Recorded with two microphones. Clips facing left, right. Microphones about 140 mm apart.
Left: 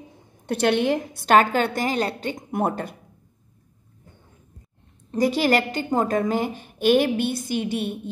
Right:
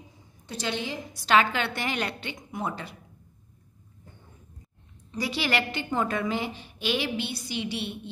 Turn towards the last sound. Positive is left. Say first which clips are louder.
# left 7 dB
turn(degrees=45)  # may be behind; listen again after turning